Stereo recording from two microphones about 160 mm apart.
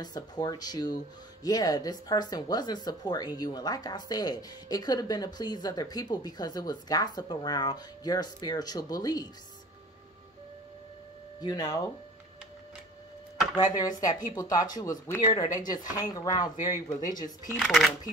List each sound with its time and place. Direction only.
0.0 s speech: 25° left (ahead or behind)
11.4 s speech: 25° left (ahead or behind)
13.7 s speech: 25° left (ahead or behind)
17.6 s speech: centre (ahead or behind)